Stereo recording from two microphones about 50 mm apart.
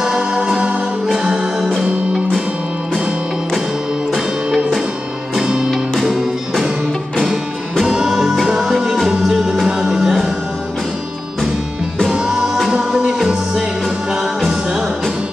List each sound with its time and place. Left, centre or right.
0.2 s music: centre
5.4 s music: centre
7.8 s music: centre
12.1 s music: centre